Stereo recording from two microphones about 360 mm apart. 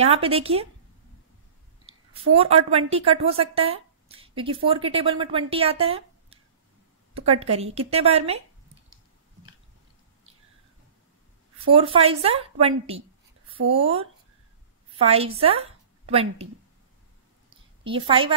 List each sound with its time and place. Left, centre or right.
0.0 s speech: centre
2.3 s a woman's voice: centre
11.7 s a woman's voice: centre
17.8 s speech: centre